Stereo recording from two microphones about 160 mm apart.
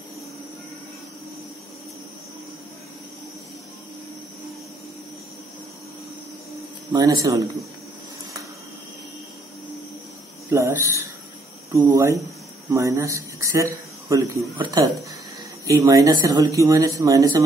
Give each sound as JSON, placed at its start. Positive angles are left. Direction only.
{"t": 6.9, "sound": "speech", "side_deg": -25}
{"t": 10.5, "sound": "speech", "side_deg": -20}